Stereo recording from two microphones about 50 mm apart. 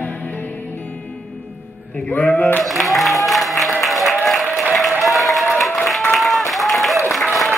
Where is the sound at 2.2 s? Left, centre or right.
Left.